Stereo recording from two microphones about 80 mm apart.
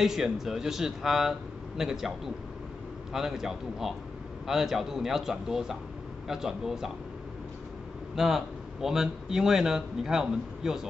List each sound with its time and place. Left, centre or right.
0.0 s speech: centre
8.2 s a man's voice: centre